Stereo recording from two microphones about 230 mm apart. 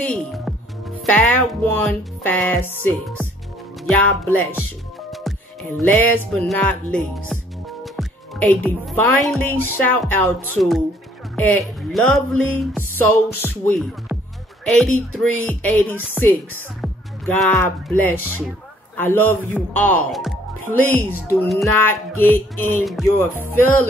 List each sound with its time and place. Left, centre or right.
1.1 s speech: centre
5.8 s speech: centre
7.3 s music: centre
7.8 s speech: centre
21.4 s speech: centre